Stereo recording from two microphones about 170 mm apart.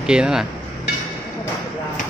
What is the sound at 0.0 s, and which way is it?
Speech, 5° right (ahead or behind).